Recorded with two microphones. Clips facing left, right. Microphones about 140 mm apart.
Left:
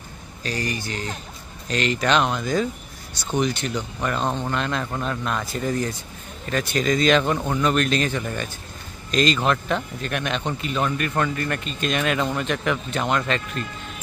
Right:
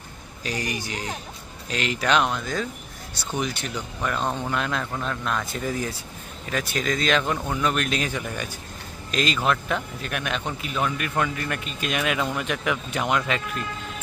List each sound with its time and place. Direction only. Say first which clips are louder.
0.4 s speech: left 2 dB; 15° right (ahead or behind)